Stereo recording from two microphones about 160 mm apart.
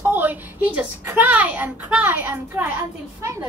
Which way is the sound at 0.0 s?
10° right (ahead or behind).